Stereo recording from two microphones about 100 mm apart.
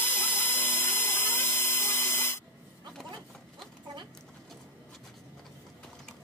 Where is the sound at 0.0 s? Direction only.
20° left (ahead or behind).